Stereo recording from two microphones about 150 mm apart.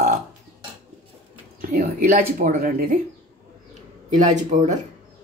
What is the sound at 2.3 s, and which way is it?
Speech, 75° right (ahead or behind).